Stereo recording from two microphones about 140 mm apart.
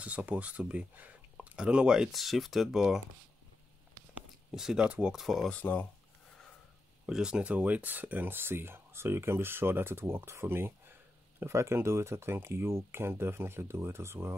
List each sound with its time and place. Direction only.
0.0 s speech: 10° right (ahead or behind)
4.5 s speech: 5° right (ahead or behind)
7.1 s speech: 5° right (ahead or behind)